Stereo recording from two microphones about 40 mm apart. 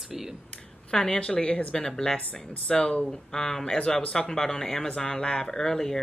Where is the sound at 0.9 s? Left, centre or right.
Left.